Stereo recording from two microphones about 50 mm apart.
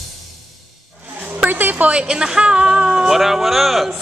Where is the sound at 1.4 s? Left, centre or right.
Right.